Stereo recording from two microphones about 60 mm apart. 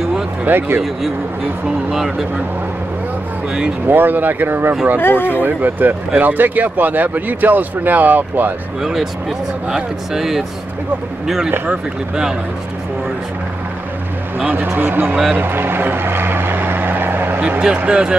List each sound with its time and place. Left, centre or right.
0.5 s speech: right
1.9 s speech: centre
3.8 s speech: right
5.0 s speech: left
5.4 s speech: right
9.7 s speech: centre
14.4 s speech: right
15.3 s vehicle: right
17.6 s speech: centre